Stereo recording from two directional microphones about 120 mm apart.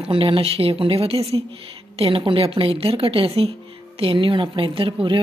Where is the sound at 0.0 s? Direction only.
50° right (ahead or behind).